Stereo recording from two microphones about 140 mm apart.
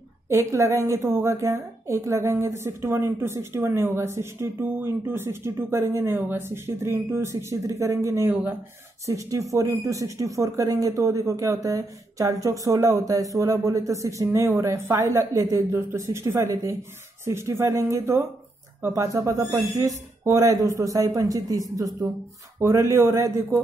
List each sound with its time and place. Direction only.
0.3 s a woman's voice: 20° right (ahead or behind)